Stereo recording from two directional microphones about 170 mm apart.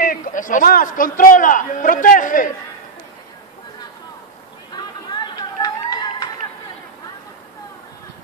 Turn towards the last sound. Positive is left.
turn(degrees=25)  # may be behind; listen again after turning